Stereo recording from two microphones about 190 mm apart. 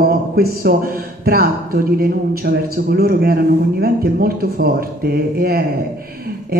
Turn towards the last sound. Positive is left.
turn(degrees=-55)  # may be behind; listen again after turning